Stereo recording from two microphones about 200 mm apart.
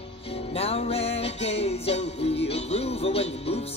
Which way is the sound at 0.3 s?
30° left (ahead or behind).